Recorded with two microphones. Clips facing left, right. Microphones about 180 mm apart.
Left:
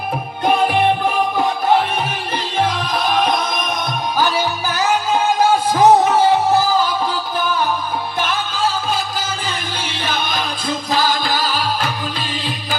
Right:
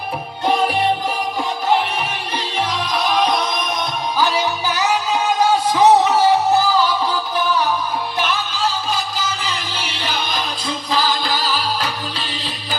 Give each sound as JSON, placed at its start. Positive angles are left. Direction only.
{"t": 2.6, "sound": "music", "side_deg": 50}
{"t": 8.2, "sound": "music", "side_deg": 50}